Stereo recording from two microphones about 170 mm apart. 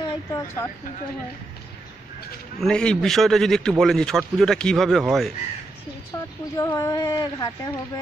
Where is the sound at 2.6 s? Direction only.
5° left (ahead or behind).